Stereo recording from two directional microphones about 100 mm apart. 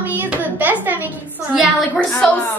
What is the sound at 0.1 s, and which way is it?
Hands, 15° right (ahead or behind).